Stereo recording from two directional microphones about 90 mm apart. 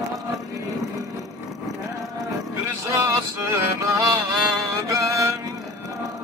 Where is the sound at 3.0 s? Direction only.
30° right (ahead or behind).